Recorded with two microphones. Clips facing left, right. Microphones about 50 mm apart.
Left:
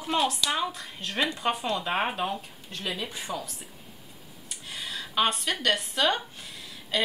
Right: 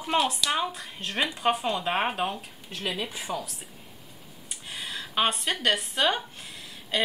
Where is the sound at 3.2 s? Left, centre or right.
Centre.